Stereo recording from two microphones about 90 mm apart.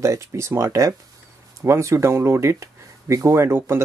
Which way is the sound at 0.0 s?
35° right (ahead or behind).